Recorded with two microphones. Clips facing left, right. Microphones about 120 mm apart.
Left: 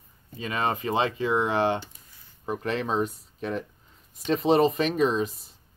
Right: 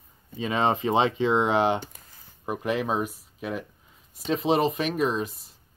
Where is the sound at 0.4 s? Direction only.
20° right (ahead or behind).